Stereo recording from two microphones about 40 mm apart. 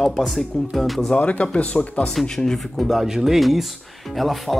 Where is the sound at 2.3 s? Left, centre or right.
Centre.